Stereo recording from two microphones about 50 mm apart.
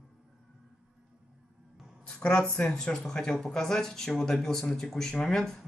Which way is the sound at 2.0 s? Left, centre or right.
Centre.